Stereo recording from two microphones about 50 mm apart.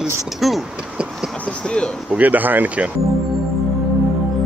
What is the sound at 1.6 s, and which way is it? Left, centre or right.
Speech, centre.